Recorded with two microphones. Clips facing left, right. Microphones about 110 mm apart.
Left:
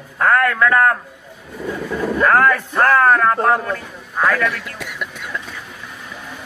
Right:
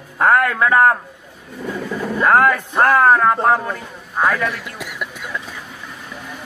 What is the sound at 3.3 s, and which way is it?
Speech, 5° right (ahead or behind).